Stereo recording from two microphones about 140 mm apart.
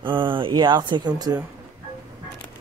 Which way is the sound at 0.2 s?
35° right (ahead or behind).